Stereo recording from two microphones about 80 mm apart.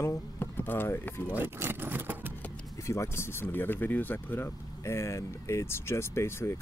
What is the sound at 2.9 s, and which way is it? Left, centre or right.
Speech, left.